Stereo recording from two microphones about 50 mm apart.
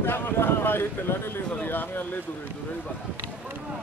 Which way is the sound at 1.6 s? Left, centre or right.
Left.